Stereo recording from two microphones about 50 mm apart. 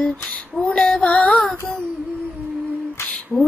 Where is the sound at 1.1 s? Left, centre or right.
Left.